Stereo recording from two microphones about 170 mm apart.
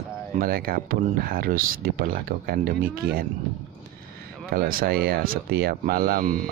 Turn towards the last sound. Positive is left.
turn(degrees=-55)  # may be behind; listen again after turning